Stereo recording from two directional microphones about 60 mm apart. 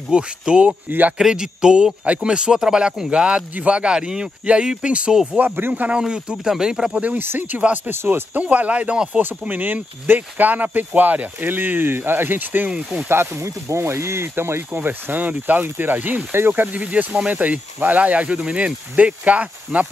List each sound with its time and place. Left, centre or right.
0.1 s speech: centre
0.8 s speech: right
1.1 s speech: centre
5.4 s speech: right
5.9 s speech: centre
6.9 s speech: right
8.4 s speech: right
9.2 s speech: right
12.6 s speech: centre
13.1 s speech: right
14.8 s speech: right
16.6 s speech: right